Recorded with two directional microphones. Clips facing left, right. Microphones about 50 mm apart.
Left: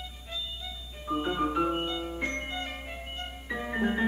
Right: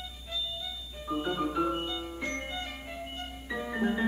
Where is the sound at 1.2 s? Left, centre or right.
Left.